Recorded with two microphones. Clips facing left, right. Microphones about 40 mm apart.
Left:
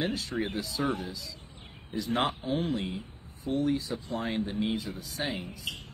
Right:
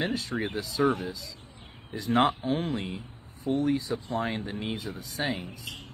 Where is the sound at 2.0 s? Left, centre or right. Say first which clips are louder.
Right 5 dB; right.